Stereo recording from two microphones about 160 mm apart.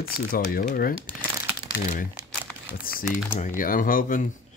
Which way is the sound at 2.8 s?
65° left (ahead or behind).